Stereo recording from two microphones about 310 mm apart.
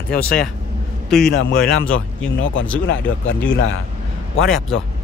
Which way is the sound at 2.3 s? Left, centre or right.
Left.